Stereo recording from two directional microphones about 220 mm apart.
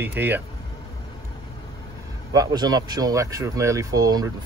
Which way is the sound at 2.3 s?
15° right (ahead or behind).